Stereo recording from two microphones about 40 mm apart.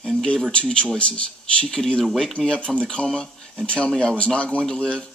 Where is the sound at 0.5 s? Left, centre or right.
Left.